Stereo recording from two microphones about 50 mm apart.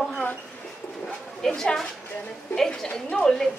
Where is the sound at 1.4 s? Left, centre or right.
Centre.